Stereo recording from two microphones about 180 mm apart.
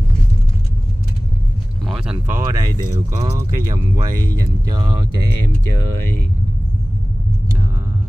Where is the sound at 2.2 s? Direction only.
15° right (ahead or behind).